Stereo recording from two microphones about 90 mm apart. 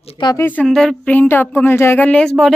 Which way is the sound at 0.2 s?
65° left (ahead or behind).